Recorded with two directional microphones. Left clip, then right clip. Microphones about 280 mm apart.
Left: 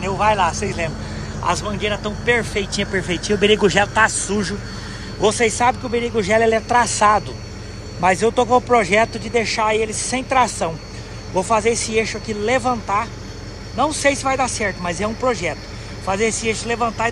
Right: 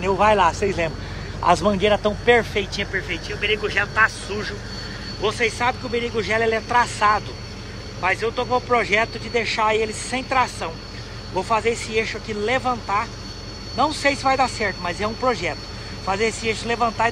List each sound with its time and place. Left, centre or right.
0.0 s speech: centre
3.2 s speech: left; by 17.1 s centre